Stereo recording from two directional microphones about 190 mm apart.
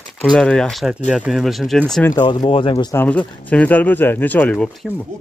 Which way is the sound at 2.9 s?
10° left (ahead or behind).